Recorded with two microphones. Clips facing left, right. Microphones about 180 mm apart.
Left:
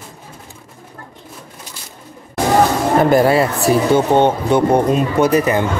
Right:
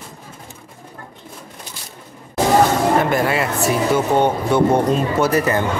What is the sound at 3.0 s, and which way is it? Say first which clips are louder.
Speech: left 6 dB; 35° left (ahead or behind).